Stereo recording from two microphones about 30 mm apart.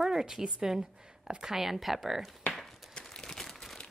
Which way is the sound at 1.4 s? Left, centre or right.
Centre.